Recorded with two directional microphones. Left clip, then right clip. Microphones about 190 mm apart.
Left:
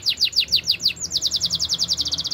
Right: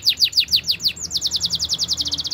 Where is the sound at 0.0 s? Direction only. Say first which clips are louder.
Right 3 dB; 15° right (ahead or behind).